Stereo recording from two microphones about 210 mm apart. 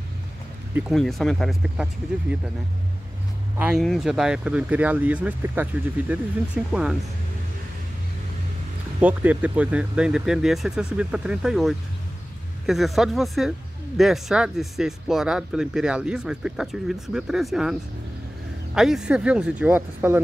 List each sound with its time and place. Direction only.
0.7 s speech: centre (ahead or behind)
3.5 s speech: 5° right (ahead or behind)
9.0 s speech: 5° right (ahead or behind)
18.8 s speech: centre (ahead or behind)